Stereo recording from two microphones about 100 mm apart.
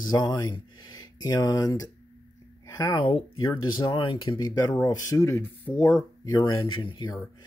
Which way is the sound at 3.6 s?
45° left (ahead or behind).